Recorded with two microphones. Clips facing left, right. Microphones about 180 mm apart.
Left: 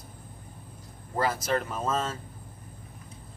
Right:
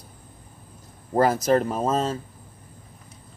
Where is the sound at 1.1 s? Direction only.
45° right (ahead or behind).